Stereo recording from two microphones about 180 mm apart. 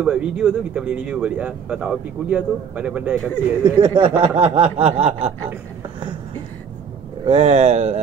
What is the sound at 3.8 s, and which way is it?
Speech, 30° right (ahead or behind).